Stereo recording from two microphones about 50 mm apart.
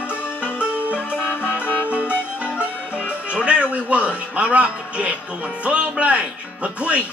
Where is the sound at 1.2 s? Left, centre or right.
Left.